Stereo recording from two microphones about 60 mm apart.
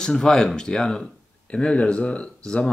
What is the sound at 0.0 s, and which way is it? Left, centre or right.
Speech, centre.